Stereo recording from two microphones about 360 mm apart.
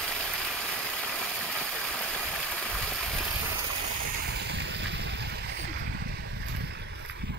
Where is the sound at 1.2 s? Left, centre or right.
Centre.